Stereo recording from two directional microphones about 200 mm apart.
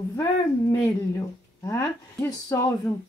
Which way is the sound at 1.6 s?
15° left (ahead or behind).